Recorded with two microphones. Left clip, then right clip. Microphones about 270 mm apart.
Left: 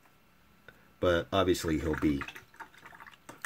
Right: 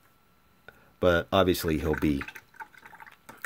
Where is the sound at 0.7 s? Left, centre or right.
Right.